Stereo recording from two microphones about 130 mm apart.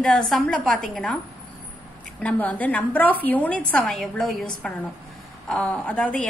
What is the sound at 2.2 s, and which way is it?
A woman's voice, 10° left (ahead or behind).